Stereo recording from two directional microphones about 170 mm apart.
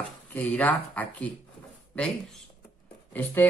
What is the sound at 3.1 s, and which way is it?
Speech, 10° left (ahead or behind).